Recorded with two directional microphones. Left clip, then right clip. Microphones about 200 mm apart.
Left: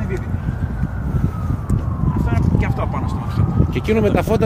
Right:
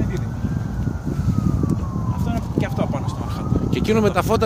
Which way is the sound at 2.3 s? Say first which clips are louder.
Right 1 dB; 60° right (ahead or behind).